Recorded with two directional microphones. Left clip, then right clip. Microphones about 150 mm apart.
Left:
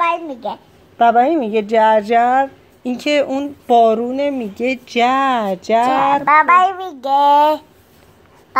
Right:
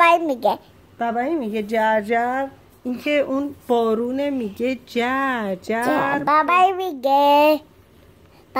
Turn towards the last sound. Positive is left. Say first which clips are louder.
# left 3 dB
turn(degrees=-35)  # may be behind; listen again after turning